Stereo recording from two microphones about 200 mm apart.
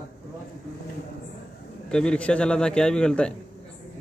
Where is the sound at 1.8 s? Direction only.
5° left (ahead or behind).